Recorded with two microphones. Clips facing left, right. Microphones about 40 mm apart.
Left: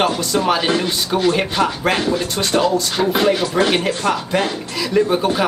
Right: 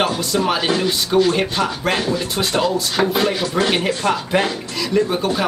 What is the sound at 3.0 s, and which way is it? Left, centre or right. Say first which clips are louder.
Speech: right 1 dB; right.